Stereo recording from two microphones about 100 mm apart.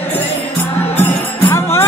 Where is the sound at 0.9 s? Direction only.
20° left (ahead or behind).